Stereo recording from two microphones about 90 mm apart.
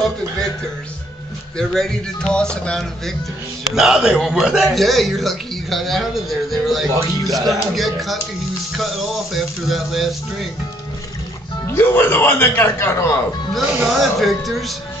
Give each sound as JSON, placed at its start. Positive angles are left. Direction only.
{"t": 1.6, "sound": "music", "side_deg": 5}
{"t": 3.7, "sound": "a man's voice", "side_deg": -5}
{"t": 11.6, "sound": "speech", "side_deg": 25}
{"t": 13.8, "sound": "a man's voice", "side_deg": 0}